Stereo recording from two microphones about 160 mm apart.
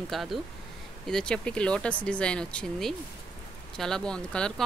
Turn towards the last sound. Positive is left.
turn(degrees=5)  # may be behind; listen again after turning